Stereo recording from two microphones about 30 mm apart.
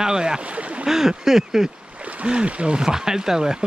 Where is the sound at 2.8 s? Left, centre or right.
Centre.